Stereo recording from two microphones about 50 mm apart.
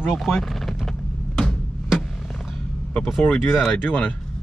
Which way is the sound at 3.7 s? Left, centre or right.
Left.